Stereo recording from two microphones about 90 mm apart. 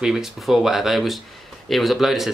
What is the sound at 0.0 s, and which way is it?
Speech, 5° right (ahead or behind).